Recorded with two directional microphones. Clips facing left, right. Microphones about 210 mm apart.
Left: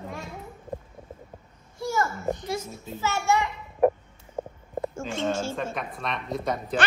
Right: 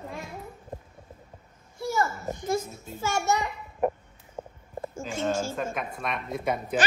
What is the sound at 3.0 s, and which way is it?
Speech, 45° right (ahead or behind).